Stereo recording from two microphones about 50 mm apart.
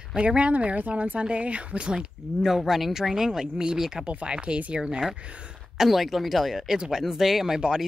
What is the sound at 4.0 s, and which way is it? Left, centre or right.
Speech, right.